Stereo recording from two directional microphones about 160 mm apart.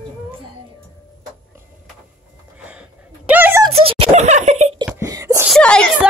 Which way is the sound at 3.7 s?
35° right (ahead or behind).